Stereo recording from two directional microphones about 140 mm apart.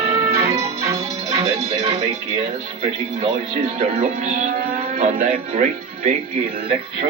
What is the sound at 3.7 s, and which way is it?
Speech, 55° right (ahead or behind).